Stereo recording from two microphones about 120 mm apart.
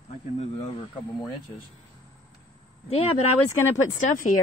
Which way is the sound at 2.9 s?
60° left (ahead or behind).